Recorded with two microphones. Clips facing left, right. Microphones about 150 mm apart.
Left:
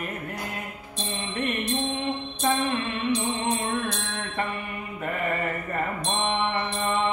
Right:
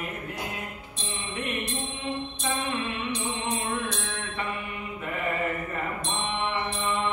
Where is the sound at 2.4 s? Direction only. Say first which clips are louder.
Left 8 dB; 45° left (ahead or behind).